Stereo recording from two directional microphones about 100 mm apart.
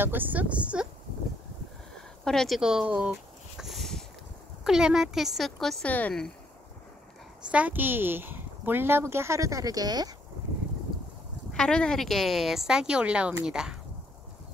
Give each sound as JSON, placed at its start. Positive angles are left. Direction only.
{"t": 0.0, "sound": "a woman's voice", "side_deg": -20}
{"t": 2.2, "sound": "a sound", "side_deg": 5}
{"t": 4.6, "sound": "a woman's voice", "side_deg": -5}
{"t": 5.9, "sound": "speech", "side_deg": 15}
{"t": 7.5, "sound": "speech", "side_deg": -15}
{"t": 11.5, "sound": "a woman's voice", "side_deg": 10}